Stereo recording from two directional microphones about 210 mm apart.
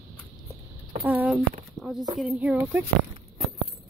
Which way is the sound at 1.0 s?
10° right (ahead or behind).